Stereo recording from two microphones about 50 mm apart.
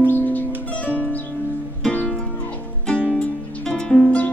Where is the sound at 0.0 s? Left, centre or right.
Left.